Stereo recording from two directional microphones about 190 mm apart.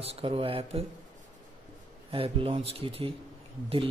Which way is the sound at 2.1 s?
30° right (ahead or behind).